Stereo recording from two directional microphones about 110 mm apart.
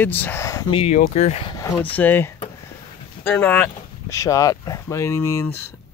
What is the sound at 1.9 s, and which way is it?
Speech, 15° left (ahead or behind).